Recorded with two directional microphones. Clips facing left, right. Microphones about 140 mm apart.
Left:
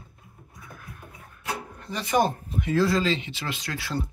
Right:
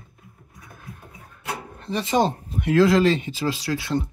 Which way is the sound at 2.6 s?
75° right (ahead or behind).